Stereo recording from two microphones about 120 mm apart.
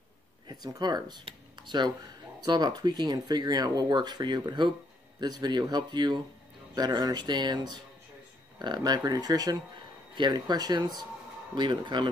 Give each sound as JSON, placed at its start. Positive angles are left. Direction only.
{"t": 0.5, "sound": "speech", "side_deg": -35}